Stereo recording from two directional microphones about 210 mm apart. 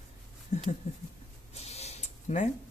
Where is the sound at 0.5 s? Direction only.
35° left (ahead or behind).